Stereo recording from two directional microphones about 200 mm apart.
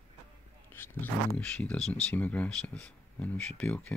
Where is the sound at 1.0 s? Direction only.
10° left (ahead or behind).